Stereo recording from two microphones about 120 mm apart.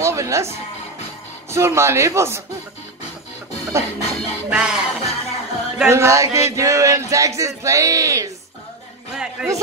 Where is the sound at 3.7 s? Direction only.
20° right (ahead or behind).